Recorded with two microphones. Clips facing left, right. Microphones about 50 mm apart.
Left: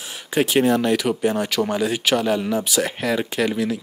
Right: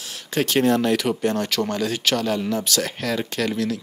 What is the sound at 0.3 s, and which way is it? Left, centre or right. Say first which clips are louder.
Speech: left 2 dB; centre.